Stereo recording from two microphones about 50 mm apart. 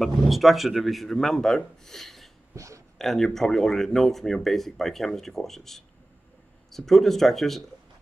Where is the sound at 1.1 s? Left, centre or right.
Centre.